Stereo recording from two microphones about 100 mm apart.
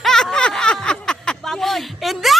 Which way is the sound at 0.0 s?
5° left (ahead or behind).